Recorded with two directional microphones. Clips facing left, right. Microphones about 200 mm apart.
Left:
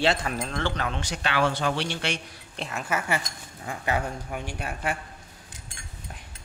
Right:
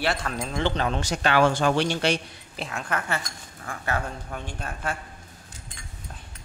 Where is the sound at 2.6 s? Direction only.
5° left (ahead or behind).